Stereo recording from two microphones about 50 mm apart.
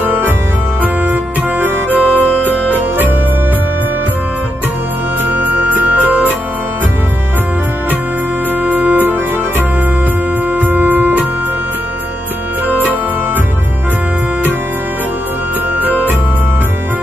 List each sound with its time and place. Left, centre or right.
0.0 s music: right
1.9 s music: left
5.3 s music: right
8.6 s music: right
15.8 s music: right